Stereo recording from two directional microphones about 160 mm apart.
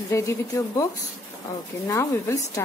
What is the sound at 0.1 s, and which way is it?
Speech, 20° left (ahead or behind).